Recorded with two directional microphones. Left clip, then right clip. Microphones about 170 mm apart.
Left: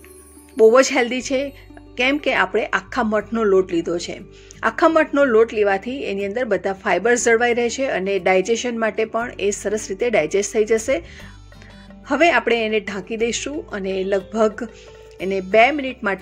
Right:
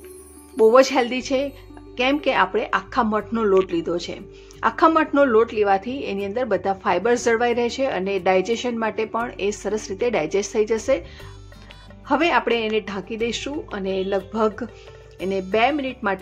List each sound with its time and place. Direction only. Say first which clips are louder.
0.6 s speech: left 2 dB; 10° left (ahead or behind)
12.1 s speech: left 3 dB; 10° left (ahead or behind)